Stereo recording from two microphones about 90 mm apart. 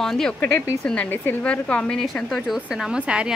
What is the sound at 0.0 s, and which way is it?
Speech, 5° left (ahead or behind).